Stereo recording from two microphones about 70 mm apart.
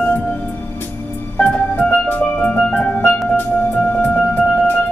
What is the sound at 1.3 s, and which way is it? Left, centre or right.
Music, centre.